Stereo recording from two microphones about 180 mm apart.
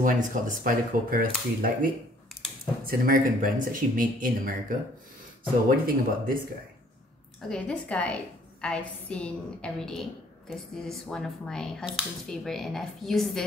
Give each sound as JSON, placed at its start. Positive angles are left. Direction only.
{"t": 0.0, "sound": "speech", "side_deg": -50}
{"t": 2.9, "sound": "speech", "side_deg": -50}
{"t": 7.4, "sound": "speech", "side_deg": 5}